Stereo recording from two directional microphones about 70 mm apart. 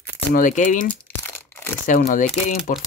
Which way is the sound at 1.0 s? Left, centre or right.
Left.